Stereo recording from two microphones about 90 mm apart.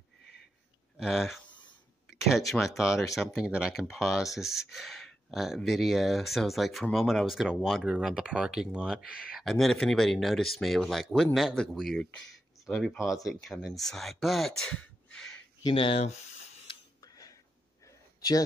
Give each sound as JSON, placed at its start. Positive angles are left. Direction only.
{"t": 0.9, "sound": "speech", "side_deg": -5}
{"t": 9.4, "sound": "speech", "side_deg": 5}
{"t": 13.1, "sound": "speech", "side_deg": 40}
{"t": 13.6, "sound": "speech", "side_deg": 0}
{"t": 15.6, "sound": "speech", "side_deg": 80}
{"t": 17.0, "sound": "tick-tock", "side_deg": 40}